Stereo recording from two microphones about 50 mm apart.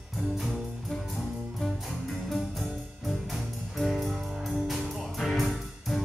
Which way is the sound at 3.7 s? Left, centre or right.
Centre.